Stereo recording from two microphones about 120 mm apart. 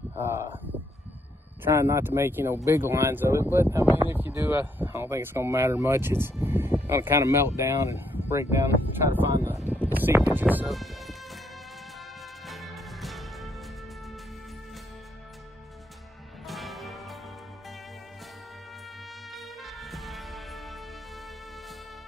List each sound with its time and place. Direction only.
0.2 s a sound: 20° right (ahead or behind)
1.6 s speech: 20° right (ahead or behind)
10.7 s music: centre (ahead or behind)
12.4 s music: centre (ahead or behind)
16.4 s music: centre (ahead or behind)
19.3 s music: centre (ahead or behind)